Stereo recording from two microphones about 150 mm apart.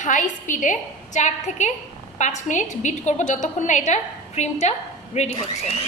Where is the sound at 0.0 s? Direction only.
55° left (ahead or behind).